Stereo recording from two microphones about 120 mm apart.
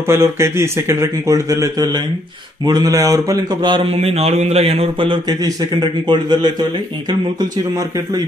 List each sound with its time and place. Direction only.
0.0 s a man's voice: 25° right (ahead or behind)
3.7 s speech: 55° right (ahead or behind); by 8.2 s 35° right (ahead or behind)